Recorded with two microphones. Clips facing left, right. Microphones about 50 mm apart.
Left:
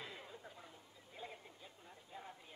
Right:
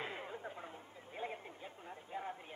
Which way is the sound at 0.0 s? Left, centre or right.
Right.